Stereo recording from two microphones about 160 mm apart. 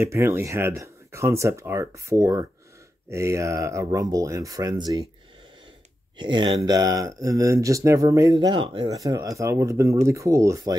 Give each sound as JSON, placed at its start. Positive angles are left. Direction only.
{"t": 0.0, "sound": "speech", "side_deg": -15}
{"t": 6.1, "sound": "speech", "side_deg": -30}
{"t": 8.9, "sound": "speech", "side_deg": -20}